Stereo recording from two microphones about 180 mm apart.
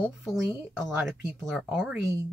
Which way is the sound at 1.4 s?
5° right (ahead or behind).